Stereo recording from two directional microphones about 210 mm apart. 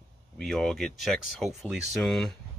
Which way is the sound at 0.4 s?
Centre (ahead or behind).